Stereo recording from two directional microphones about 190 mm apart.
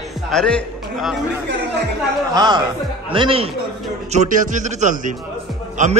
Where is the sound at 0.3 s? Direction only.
5° left (ahead or behind).